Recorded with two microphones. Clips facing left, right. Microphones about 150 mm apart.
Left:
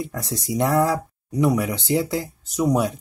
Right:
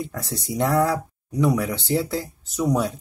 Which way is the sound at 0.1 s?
15° left (ahead or behind).